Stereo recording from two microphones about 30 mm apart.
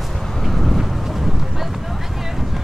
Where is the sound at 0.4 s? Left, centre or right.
Centre.